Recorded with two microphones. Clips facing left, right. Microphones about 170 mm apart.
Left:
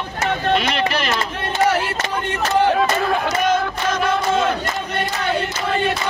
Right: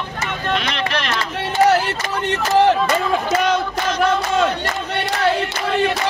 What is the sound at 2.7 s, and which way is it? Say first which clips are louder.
Speech: even; 60° left (ahead or behind).